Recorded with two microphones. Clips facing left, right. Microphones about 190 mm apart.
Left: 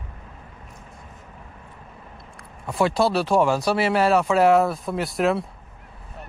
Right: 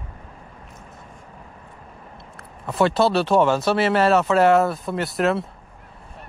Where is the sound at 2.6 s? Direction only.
Centre (ahead or behind).